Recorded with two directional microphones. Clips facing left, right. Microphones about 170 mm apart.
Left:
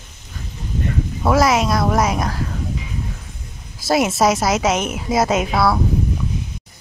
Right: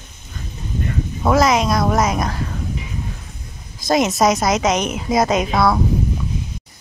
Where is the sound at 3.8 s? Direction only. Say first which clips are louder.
Even; 5° left (ahead or behind).